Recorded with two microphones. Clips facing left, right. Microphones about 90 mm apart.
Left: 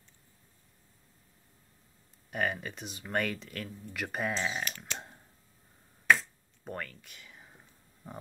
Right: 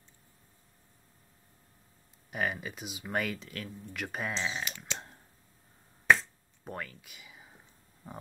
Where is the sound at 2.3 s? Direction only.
Centre (ahead or behind).